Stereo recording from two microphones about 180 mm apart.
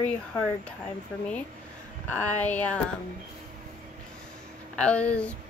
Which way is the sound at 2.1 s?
10° left (ahead or behind).